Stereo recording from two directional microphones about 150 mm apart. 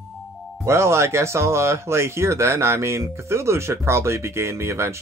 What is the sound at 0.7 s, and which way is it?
Speech, 20° right (ahead or behind).